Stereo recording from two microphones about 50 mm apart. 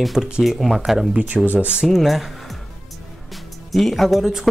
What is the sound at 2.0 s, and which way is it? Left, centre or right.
Speech, centre.